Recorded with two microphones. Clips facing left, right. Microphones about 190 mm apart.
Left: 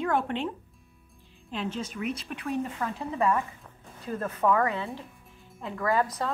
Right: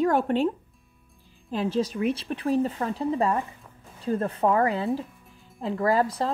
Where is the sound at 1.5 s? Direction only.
35° right (ahead or behind).